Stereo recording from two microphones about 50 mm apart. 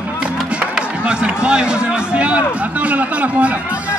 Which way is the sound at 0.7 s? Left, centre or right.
Right.